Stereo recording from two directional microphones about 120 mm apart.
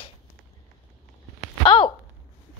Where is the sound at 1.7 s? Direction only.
45° left (ahead or behind).